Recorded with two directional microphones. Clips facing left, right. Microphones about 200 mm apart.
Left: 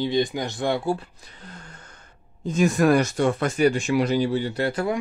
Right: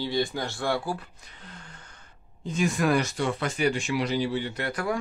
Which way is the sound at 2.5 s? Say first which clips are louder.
Left 6 dB; 45° left (ahead or behind).